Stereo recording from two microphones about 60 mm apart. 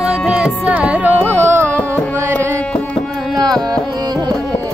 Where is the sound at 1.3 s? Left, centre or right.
Right.